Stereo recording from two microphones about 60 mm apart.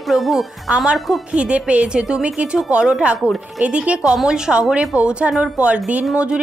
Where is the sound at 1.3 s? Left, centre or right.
Centre.